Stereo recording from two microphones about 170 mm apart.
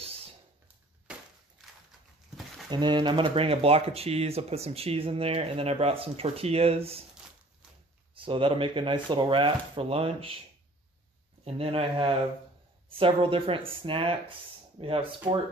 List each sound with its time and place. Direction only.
1.1 s walk: 5° right (ahead or behind)
2.7 s speech: 25° right (ahead or behind)
8.1 s speech: 30° right (ahead or behind)
11.4 s speech: 35° right (ahead or behind)